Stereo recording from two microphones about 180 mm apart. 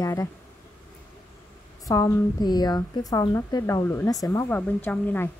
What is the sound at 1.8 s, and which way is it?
A woman's voice, 20° left (ahead or behind).